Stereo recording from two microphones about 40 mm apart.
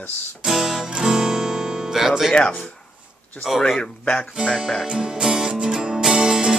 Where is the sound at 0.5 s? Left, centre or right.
Centre.